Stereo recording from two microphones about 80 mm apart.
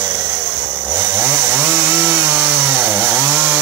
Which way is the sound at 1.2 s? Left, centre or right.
Right.